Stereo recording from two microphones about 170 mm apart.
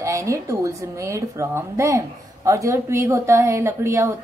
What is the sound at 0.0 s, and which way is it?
A woman's voice, 20° right (ahead or behind).